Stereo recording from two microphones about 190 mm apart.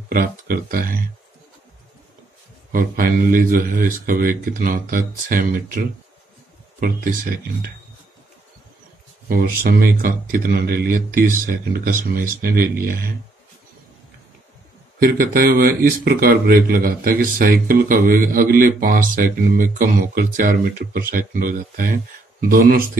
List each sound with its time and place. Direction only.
0.1 s speech: 50° right (ahead or behind)
2.7 s speech: 45° right (ahead or behind)
9.3 s speech: 50° right (ahead or behind)
15.0 s speech: 50° right (ahead or behind)